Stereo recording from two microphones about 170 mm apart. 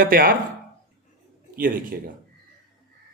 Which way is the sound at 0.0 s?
60° right (ahead or behind).